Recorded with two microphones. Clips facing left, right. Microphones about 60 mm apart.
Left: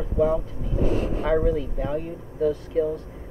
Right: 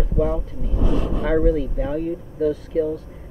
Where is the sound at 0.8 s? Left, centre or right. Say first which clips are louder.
Right 1 dB; right.